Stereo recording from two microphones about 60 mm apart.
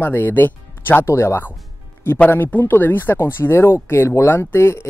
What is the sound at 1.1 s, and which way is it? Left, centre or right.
Speech, left.